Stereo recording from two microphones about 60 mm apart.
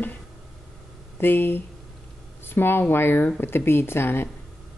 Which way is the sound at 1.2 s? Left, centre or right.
Left.